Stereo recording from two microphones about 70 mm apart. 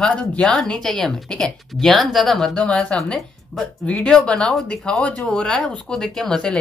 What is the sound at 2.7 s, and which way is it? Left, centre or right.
Speech, centre.